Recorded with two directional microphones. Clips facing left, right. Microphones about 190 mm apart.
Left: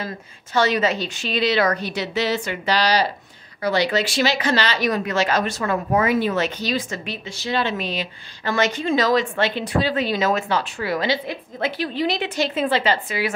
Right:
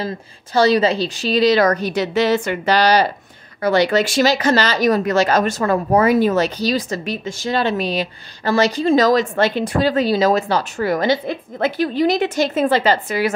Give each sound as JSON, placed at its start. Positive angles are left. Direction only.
{"t": 0.0, "sound": "speech", "side_deg": -35}